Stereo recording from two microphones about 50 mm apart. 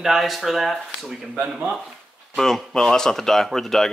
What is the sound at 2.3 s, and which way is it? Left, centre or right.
Speech, centre.